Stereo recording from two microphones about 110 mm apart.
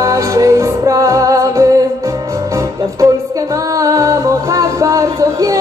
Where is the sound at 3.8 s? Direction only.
30° right (ahead or behind).